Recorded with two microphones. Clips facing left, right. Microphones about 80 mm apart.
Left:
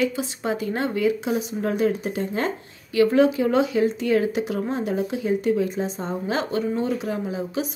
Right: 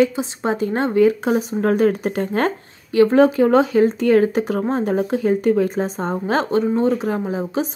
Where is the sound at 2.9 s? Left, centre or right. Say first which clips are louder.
Right 4 dB; right.